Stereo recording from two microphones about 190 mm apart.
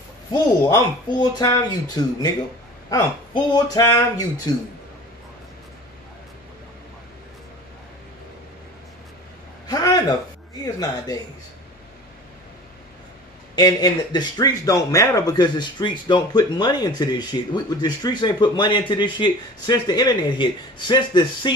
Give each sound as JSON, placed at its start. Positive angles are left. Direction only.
{"t": 0.3, "sound": "speech", "side_deg": 20}
{"t": 9.7, "sound": "a sound", "side_deg": 20}
{"t": 10.6, "sound": "speech", "side_deg": 20}
{"t": 13.6, "sound": "speech", "side_deg": 20}